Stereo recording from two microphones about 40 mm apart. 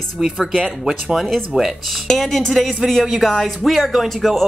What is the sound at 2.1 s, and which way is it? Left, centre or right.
Speech, centre.